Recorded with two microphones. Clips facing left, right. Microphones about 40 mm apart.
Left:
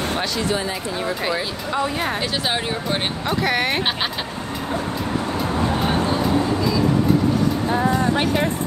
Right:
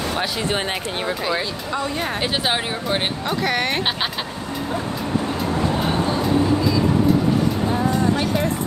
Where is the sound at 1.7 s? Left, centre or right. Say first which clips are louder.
Left 2 dB; centre.